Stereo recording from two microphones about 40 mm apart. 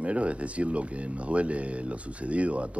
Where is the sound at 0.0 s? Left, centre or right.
Right.